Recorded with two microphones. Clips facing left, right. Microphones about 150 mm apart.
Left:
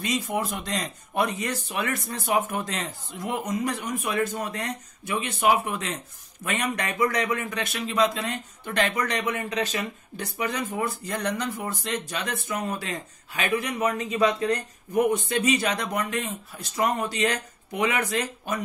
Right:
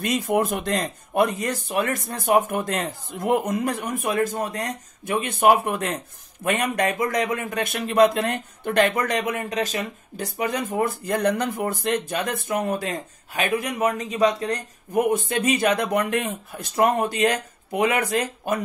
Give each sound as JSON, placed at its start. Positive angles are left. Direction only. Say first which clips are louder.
{"t": 0.0, "sound": "speech", "louder": "right 5 dB", "side_deg": -55}